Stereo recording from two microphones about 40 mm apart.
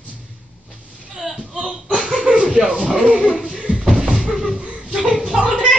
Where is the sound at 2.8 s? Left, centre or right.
Centre.